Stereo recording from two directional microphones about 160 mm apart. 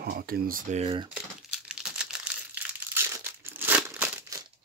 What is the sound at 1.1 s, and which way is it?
Crumpling, 5° right (ahead or behind).